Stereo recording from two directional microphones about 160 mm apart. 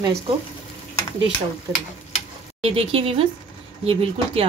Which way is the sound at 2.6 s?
35° right (ahead or behind).